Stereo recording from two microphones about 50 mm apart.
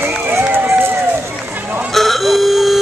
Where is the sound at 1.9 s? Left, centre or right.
Centre.